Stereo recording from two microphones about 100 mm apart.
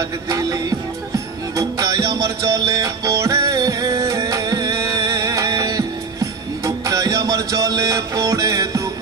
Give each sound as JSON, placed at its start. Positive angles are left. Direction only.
{"t": 0.3, "sound": "music", "side_deg": -40}